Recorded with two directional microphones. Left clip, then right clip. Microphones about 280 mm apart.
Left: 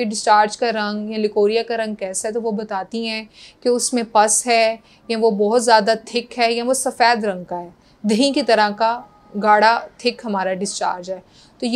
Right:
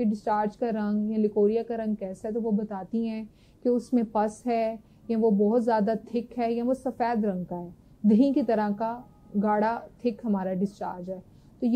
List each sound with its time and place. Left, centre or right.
0.0 s a woman's voice: centre
2.6 s a woman's voice: centre
5.2 s speech: left
5.5 s a woman's voice: centre